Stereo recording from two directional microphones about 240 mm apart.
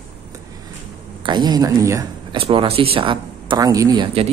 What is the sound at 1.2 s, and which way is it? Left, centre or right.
Speech, centre.